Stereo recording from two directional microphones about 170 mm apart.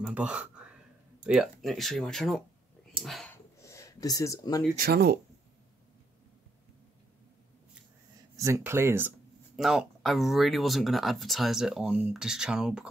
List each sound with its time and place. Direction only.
0.0 s whispering: 5° right (ahead or behind)
1.2 s speech: 5° right (ahead or behind)
3.0 s a sound: centre (ahead or behind)
3.6 s speech: 15° left (ahead or behind)
4.7 s speech: 65° right (ahead or behind)
8.4 s speech: 15° right (ahead or behind)
9.6 s speech: centre (ahead or behind)